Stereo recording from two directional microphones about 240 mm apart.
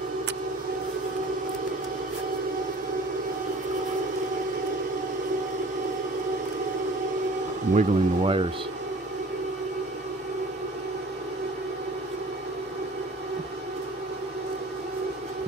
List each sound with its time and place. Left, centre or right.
7.7 s speech: right